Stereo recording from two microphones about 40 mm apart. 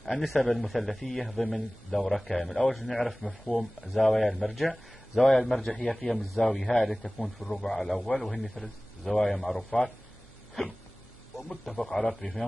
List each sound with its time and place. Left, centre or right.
0.0 s a man's voice: centre
11.6 s a man's voice: centre